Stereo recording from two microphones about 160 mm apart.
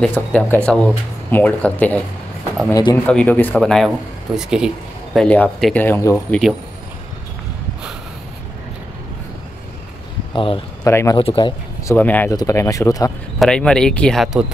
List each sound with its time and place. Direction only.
0.0 s speech: 5° left (ahead or behind)
2.7 s speech: 20° left (ahead or behind)
3.1 s speech: 10° left (ahead or behind)
5.1 s speech: 5° left (ahead or behind)
10.3 s speech: 35° left (ahead or behind)
10.8 s speech: 20° left (ahead or behind)
11.1 s speech: 30° left (ahead or behind)
11.9 s speech: 10° left (ahead or behind)
13.4 s speech: 5° left (ahead or behind)